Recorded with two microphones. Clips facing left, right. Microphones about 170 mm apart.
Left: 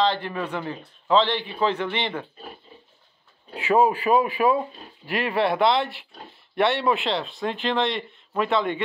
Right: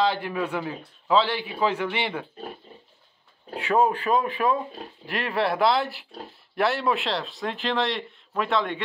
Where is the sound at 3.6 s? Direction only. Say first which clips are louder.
Left 2 dB; 5° left (ahead or behind).